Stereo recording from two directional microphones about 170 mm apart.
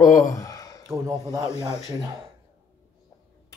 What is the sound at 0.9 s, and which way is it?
Speech, 20° right (ahead or behind).